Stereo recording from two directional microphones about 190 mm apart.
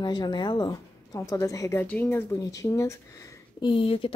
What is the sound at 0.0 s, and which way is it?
A woman's voice, 25° left (ahead or behind).